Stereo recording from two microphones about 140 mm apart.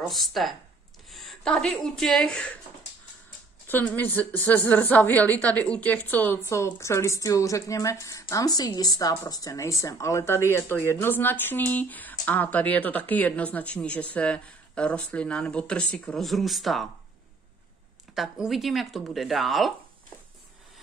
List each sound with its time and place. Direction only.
0.0 s speech: centre (ahead or behind)
3.6 s a woman's voice: 15° left (ahead or behind)
18.1 s speech: centre (ahead or behind)